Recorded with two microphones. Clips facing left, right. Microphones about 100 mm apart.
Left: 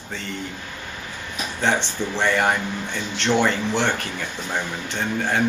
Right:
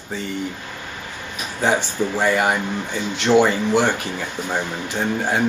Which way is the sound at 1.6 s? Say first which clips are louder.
Right 3 dB; 5° right (ahead or behind).